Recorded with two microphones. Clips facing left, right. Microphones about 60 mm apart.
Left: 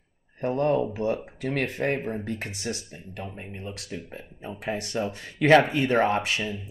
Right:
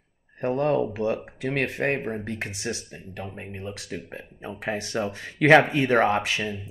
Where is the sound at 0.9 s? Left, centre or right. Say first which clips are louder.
Right 1 dB; right.